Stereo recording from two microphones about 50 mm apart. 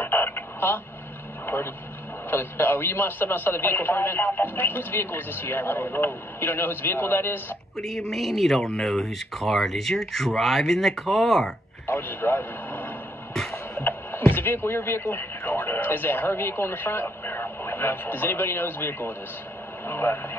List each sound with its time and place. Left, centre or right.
0.0 s telephone: left
1.4 s vehicle: left
2.3 s speech: left
7.7 s speech: centre
11.9 s speech: left
13.3 s music: centre
13.7 s a sound: left
15.0 s speech: left